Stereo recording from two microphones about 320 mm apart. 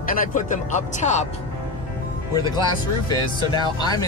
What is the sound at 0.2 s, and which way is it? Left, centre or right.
Speech, left.